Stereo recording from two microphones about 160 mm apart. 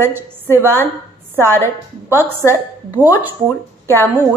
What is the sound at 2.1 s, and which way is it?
Speech, 15° right (ahead or behind).